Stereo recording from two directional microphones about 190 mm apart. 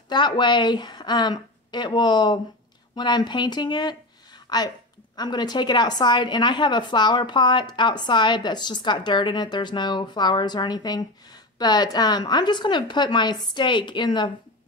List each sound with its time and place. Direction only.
0.1 s a woman's voice: 25° left (ahead or behind)